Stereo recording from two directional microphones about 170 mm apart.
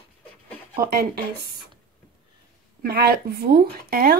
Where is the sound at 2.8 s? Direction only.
65° right (ahead or behind).